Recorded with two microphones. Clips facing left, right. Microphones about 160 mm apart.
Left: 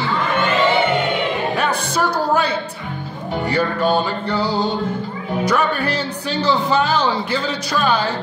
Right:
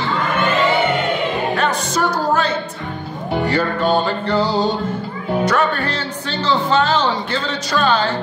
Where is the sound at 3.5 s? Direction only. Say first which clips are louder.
Left 1 dB; 10° left (ahead or behind).